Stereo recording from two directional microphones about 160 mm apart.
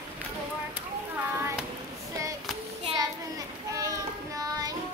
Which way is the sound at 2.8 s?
20° right (ahead or behind).